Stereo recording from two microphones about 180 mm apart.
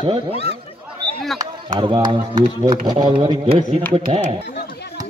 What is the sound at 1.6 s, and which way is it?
Speech, 25° right (ahead or behind).